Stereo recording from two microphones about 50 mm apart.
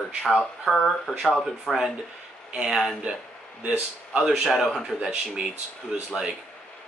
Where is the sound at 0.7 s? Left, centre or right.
Centre.